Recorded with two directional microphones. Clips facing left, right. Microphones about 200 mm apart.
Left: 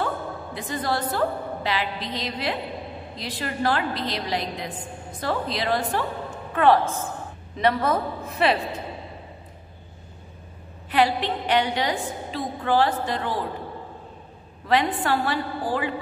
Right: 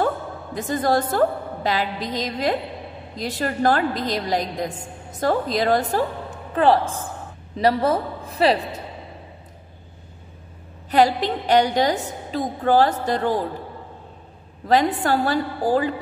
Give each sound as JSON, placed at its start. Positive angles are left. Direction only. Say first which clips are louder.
{"t": 0.6, "sound": "a woman's voice", "louder": "right 7 dB", "side_deg": -45}
{"t": 6.5, "sound": "a woman's voice", "louder": "right 1 dB", "side_deg": -30}
{"t": 10.9, "sound": "a woman's voice", "louder": "right 4 dB", "side_deg": -40}
{"t": 14.7, "sound": "a woman's voice", "louder": "right 4 dB", "side_deg": -40}